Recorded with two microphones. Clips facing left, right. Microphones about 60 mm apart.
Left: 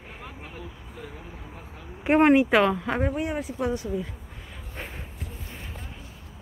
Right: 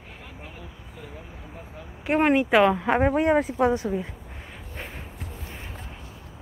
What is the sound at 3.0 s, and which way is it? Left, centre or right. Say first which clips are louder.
Speech: right 7 dB; right.